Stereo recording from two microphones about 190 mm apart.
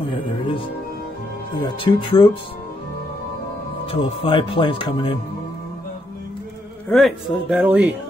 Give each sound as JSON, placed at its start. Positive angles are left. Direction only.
{"t": 1.8, "sound": "speech", "side_deg": 25}
{"t": 3.8, "sound": "speech", "side_deg": 30}
{"t": 6.9, "sound": "speech", "side_deg": 0}